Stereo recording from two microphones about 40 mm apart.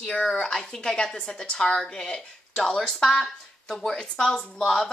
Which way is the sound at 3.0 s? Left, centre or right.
Centre.